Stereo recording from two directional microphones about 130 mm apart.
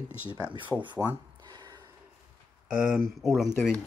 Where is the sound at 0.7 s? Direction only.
Centre (ahead or behind).